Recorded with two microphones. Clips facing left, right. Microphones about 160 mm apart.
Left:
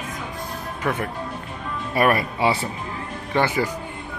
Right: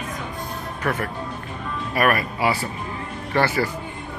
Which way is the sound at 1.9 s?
25° left (ahead or behind).